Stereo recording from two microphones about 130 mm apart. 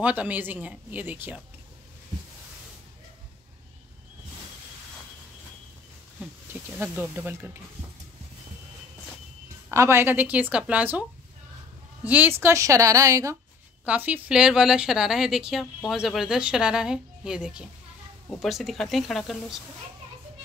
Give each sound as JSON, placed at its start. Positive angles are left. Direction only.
{"t": 0.0, "sound": "a woman's voice", "side_deg": -10}
{"t": 6.5, "sound": "a woman's voice", "side_deg": -15}
{"t": 9.7, "sound": "a woman's voice", "side_deg": -20}
{"t": 13.8, "sound": "a woman's voice", "side_deg": -10}